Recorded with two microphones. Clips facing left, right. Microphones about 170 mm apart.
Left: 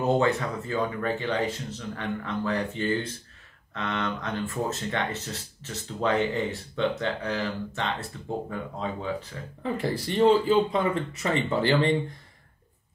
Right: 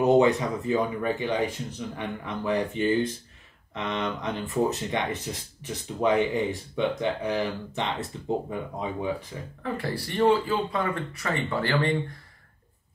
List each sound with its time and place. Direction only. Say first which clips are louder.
0.0 s speech: right 4 dB; 15° right (ahead or behind)
9.6 s speech: left 2 dB; 20° left (ahead or behind)